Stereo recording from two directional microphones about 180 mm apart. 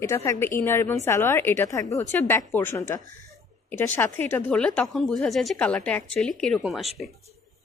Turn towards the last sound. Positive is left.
turn(degrees=0)  # may be behind; listen again after turning